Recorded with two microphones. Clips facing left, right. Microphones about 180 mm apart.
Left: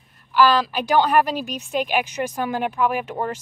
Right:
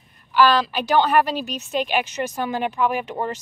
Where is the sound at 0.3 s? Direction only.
5° left (ahead or behind).